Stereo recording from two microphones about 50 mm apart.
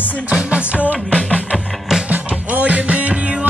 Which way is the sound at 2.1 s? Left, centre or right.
Right.